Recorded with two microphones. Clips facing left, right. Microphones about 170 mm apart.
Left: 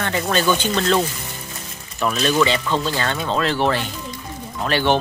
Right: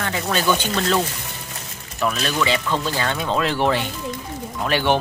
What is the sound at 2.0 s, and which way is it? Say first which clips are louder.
Speech: left 4 dB; centre (ahead or behind).